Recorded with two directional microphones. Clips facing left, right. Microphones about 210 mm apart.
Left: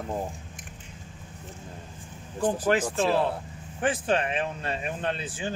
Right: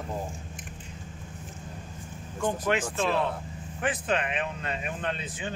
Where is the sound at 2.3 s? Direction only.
30° left (ahead or behind).